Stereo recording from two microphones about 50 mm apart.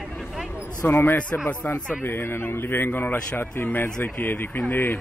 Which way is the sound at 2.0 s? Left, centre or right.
Left.